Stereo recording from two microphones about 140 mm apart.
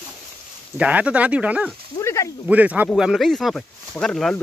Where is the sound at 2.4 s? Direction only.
10° right (ahead or behind).